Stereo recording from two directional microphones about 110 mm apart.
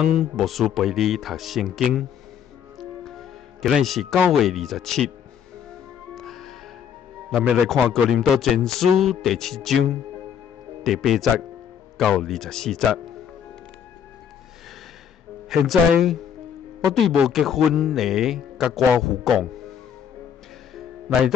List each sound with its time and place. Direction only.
0.0 s a man's voice: centre (ahead or behind)
2.8 s music: centre (ahead or behind)
3.8 s a man's voice: centre (ahead or behind)
6.1 s music: centre (ahead or behind)
7.3 s a man's voice: centre (ahead or behind)
10.8 s a man's voice: centre (ahead or behind)
15.5 s a man's voice: centre (ahead or behind)